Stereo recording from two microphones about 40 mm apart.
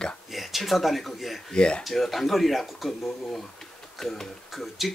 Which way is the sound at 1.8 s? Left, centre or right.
Centre.